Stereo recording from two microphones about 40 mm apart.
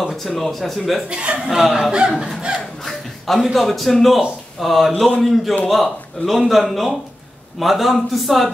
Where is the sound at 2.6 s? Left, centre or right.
Centre.